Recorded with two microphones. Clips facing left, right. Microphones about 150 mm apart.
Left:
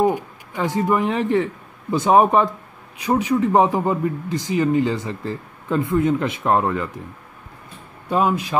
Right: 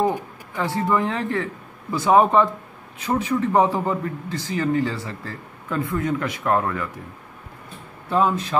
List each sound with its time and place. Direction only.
0.0 s a man's voice: 15° left (ahead or behind)
8.1 s a man's voice: 15° left (ahead or behind)